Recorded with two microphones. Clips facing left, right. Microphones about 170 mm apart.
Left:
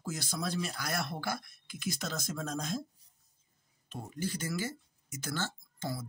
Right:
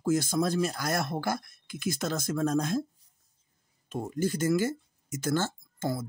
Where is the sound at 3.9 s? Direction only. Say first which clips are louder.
Right 8 dB; 45° right (ahead or behind).